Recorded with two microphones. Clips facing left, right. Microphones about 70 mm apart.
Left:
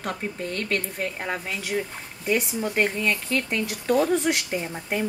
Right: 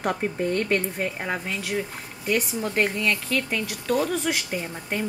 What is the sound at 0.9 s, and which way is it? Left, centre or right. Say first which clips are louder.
Speech: right 1 dB; centre.